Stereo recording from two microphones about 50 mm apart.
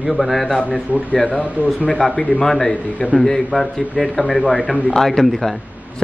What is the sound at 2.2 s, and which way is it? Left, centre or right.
Speech, left.